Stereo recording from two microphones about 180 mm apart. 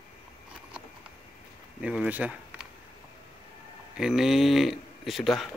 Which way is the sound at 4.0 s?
Centre (ahead or behind).